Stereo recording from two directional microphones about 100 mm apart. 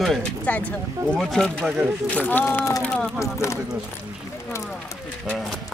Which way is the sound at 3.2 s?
30° left (ahead or behind).